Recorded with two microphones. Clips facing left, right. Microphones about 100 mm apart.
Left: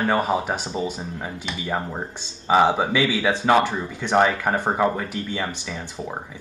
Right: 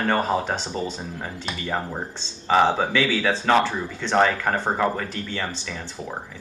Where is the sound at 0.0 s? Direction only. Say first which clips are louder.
Left 1 dB; 10° left (ahead or behind).